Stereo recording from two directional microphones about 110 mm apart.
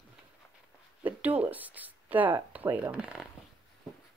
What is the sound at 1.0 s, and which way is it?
Speech, 15° right (ahead or behind).